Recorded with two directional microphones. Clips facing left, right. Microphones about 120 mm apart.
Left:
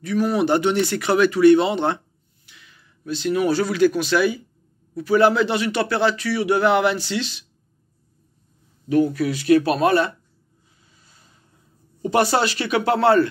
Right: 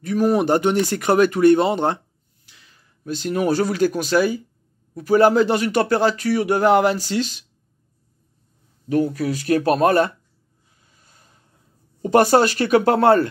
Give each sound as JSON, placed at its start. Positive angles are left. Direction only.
{"t": 0.0, "sound": "speech", "side_deg": -45}
{"t": 2.4, "sound": "a sound", "side_deg": -35}
{"t": 3.1, "sound": "speech", "side_deg": -45}
{"t": 9.1, "sound": "speech", "side_deg": -40}
{"t": 10.8, "sound": "vehicle", "side_deg": -50}
{"t": 12.0, "sound": "speech", "side_deg": -45}